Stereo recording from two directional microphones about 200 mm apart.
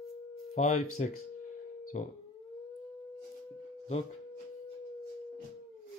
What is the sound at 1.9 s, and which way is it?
Speech, 35° left (ahead or behind).